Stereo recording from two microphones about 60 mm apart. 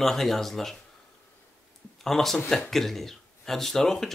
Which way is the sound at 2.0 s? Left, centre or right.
Centre.